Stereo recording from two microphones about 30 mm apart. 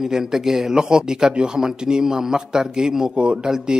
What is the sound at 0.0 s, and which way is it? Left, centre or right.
Speech, centre.